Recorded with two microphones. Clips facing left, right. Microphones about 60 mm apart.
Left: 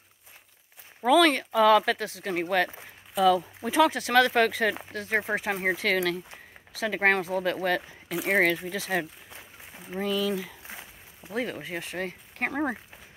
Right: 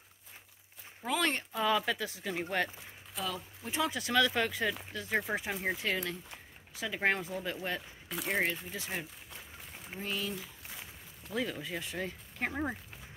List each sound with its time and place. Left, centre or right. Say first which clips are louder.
1.2 s speech: left 11 dB; left
3.9 s speech: left 7 dB; left
5.8 s speech: left 9 dB; left
6.7 s speech: left 7 dB; left
8.3 s speech: left 9 dB; left
11.3 s speech: left 4 dB; left